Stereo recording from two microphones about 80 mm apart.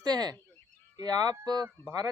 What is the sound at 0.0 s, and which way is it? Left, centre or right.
Speech, right.